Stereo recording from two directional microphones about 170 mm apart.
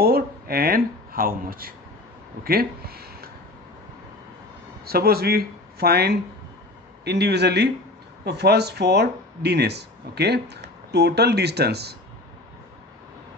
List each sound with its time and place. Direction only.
0.0 s speech: 65° right (ahead or behind)
4.8 s speech: 65° right (ahead or behind)